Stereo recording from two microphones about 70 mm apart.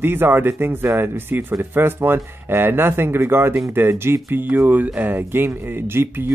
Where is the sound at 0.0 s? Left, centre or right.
Right.